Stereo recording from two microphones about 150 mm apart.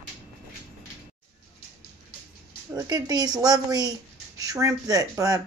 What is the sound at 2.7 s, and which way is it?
Speech, 25° right (ahead or behind).